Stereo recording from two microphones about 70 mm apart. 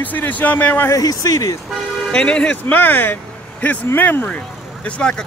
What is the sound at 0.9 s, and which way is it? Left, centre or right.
Speech, left.